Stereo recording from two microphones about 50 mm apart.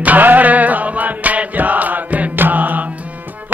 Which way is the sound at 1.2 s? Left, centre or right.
Right.